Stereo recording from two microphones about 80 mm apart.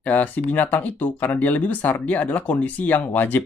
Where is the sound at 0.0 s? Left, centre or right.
Left.